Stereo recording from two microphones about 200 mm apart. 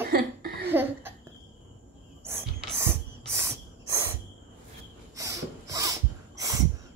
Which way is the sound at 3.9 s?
15° right (ahead or behind).